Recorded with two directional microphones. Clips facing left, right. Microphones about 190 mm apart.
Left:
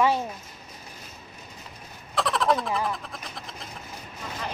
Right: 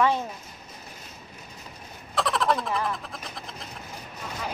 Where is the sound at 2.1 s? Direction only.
Centre (ahead or behind).